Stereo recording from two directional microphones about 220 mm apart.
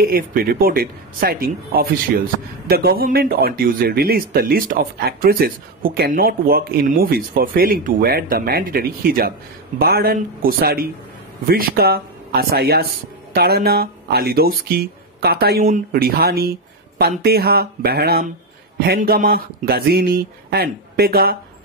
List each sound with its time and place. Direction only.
0.0 s speech: 40° right (ahead or behind)